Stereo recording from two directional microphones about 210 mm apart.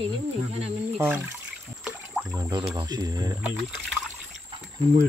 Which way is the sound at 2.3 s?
15° right (ahead or behind).